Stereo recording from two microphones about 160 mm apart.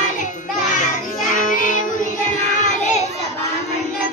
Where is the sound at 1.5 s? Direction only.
55° left (ahead or behind).